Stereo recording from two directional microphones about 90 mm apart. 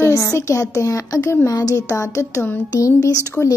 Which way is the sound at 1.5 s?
40° left (ahead or behind).